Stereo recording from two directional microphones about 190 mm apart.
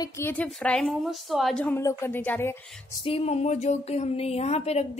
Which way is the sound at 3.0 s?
35° left (ahead or behind).